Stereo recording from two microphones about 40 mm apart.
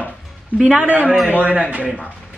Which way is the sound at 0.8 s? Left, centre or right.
Right.